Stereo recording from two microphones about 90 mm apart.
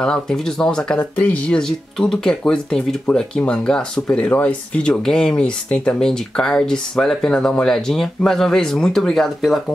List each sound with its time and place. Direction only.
0.0 s speech: 10° left (ahead or behind)
1.6 s speech: 5° left (ahead or behind)